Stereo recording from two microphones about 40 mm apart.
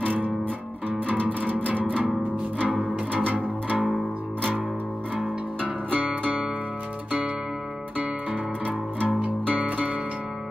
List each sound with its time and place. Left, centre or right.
1.0 s music: right
2.6 s music: left
3.2 s music: right
5.9 s music: right
9.0 s music: right